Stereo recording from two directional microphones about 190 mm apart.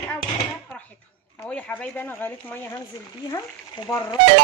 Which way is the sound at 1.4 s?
10° left (ahead or behind).